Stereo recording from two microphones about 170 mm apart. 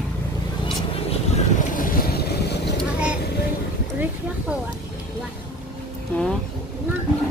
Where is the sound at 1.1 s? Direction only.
50° left (ahead or behind); by 2.7 s 75° left (ahead or behind).